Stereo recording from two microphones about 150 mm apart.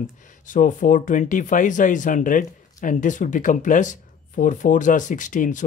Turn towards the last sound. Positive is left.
turn(degrees=60)  # may be behind; listen again after turning